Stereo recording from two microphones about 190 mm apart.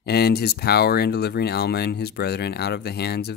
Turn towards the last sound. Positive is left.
turn(degrees=60)  # may be behind; listen again after turning